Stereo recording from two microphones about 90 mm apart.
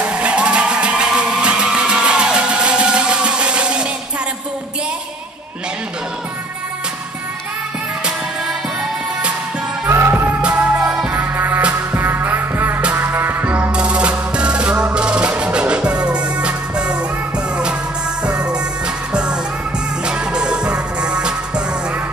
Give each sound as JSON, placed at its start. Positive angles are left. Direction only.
{"t": 0.0, "sound": "music", "side_deg": -10}
{"t": 9.8, "sound": "music", "side_deg": -25}
{"t": 10.8, "sound": "music", "side_deg": -5}
{"t": 11.1, "sound": "music", "side_deg": -25}
{"t": 18.2, "sound": "music", "side_deg": -10}
{"t": 20.1, "sound": "music", "side_deg": -10}